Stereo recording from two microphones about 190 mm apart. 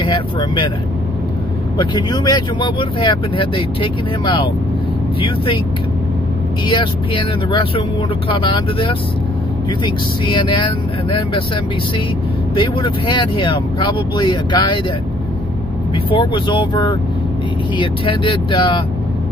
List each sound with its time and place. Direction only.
0.0 s speech: 25° left (ahead or behind)
1.8 s speech: 20° left (ahead or behind)
6.6 s speech: 25° left (ahead or behind)
12.5 s speech: 25° left (ahead or behind)
16.1 s speech: 25° left (ahead or behind)